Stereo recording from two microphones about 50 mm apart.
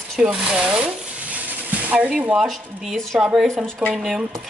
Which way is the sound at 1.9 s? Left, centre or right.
Right.